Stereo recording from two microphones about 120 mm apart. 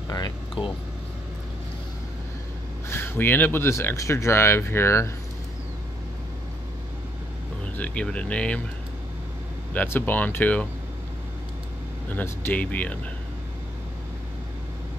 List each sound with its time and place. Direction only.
0.1 s air conditioning: 35° left (ahead or behind)
2.9 s speech: 20° left (ahead or behind)
7.7 s speech: 10° left (ahead or behind)
9.8 s speech: 15° left (ahead or behind)
12.1 s speech: 15° left (ahead or behind)